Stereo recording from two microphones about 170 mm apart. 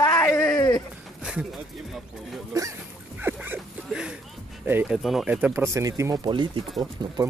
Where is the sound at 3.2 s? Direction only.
10° right (ahead or behind).